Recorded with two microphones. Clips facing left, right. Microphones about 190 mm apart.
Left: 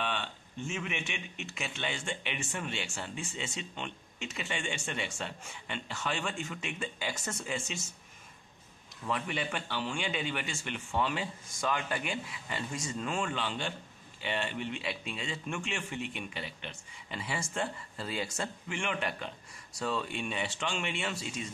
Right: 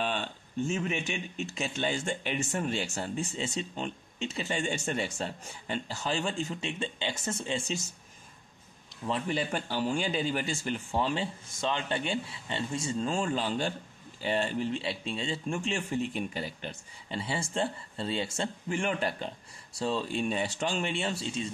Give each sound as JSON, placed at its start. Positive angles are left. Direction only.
{"t": 0.0, "sound": "speech", "side_deg": -40}
{"t": 9.0, "sound": "speech", "side_deg": -30}